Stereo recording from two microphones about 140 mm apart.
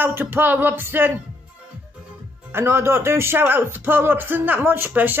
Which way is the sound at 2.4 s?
15° right (ahead or behind).